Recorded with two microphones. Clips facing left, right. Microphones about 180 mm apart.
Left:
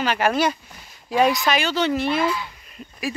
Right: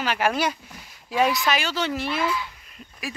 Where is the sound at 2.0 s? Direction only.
45° left (ahead or behind).